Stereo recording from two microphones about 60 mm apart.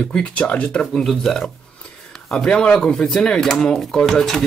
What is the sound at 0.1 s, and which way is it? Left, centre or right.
Speech, centre.